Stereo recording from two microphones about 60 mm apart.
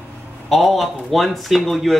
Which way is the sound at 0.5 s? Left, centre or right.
Centre.